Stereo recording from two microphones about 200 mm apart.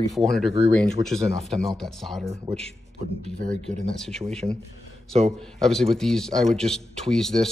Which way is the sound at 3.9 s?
Centre (ahead or behind).